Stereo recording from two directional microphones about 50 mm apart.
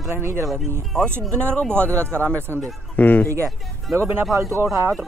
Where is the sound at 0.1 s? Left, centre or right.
Right.